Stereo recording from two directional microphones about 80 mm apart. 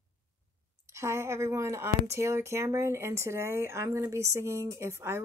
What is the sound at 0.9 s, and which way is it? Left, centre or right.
Speech, right.